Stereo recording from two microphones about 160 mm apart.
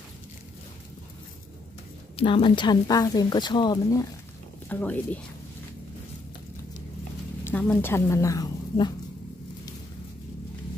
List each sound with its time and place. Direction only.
2.1 s speech: 30° left (ahead or behind)
4.6 s speech: 10° left (ahead or behind)
7.4 s speech: 10° left (ahead or behind); by 8.9 s 25° left (ahead or behind)